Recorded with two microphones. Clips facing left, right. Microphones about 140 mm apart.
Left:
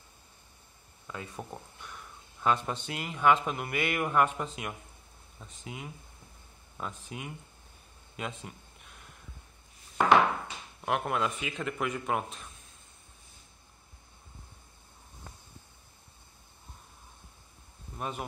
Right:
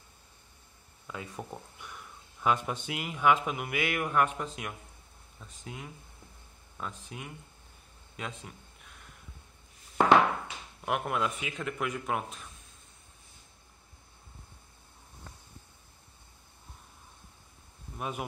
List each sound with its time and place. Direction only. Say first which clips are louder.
1.0 s a man's voice: even; centre (ahead or behind)
10.9 s a man's voice: left 1 dB; centre (ahead or behind)
17.9 s speech: even; 5° right (ahead or behind)